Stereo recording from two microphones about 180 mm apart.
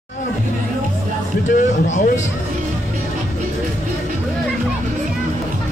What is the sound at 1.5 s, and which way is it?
Speech, 40° left (ahead or behind).